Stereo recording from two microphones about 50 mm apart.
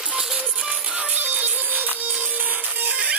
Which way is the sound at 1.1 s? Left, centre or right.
Right.